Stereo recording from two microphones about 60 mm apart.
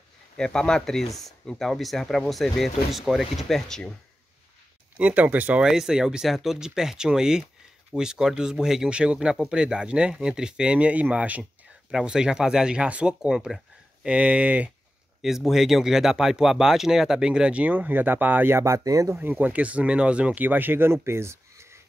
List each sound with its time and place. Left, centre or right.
0.4 s speech: centre
4.9 s speech: right
5.6 s speech: centre; by 11.4 s right
11.9 s speech: centre
15.2 s speech: centre; by 18.5 s right
18.5 s speech: right
19.1 s speech: right